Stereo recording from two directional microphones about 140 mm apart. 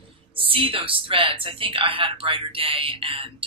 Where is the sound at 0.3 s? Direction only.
40° right (ahead or behind).